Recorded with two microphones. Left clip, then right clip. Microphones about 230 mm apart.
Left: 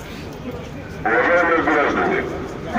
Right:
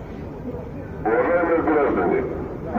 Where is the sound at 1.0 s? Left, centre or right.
Left.